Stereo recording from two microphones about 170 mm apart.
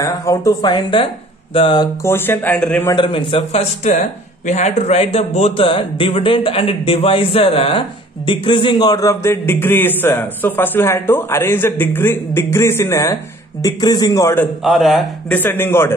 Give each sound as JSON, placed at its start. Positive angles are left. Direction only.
{"t": 0.0, "sound": "a man's voice", "side_deg": 20}
{"t": 2.0, "sound": "a man's voice", "side_deg": 15}
{"t": 2.9, "sound": "a man's voice", "side_deg": 30}
{"t": 14.6, "sound": "speech", "side_deg": 0}
{"t": 15.3, "sound": "a man's voice", "side_deg": 10}